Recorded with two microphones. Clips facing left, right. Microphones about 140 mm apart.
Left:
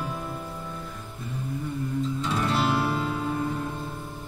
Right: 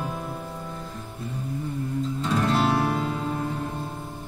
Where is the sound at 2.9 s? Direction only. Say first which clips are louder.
Even; 35° right (ahead or behind).